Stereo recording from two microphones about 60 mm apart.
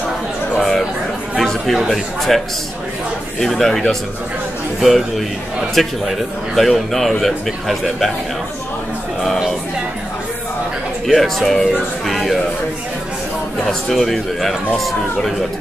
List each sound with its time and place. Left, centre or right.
0.6 s a man's voice: centre
11.1 s a man's voice: centre
12.1 s a sound: centre
13.7 s a man's voice: centre